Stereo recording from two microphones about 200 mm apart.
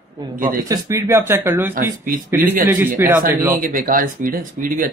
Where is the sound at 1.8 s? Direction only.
45° right (ahead or behind).